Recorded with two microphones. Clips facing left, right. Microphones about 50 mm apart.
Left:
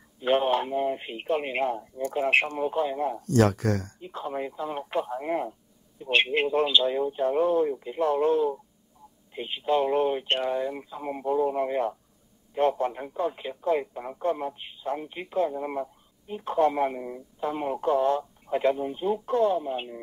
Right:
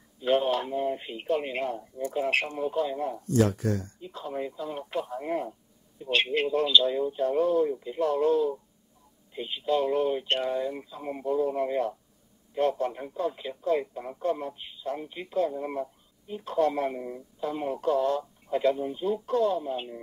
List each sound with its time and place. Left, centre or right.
0.2 s speech: left
3.3 s speech: left
4.0 s speech: left
17.4 s speech: left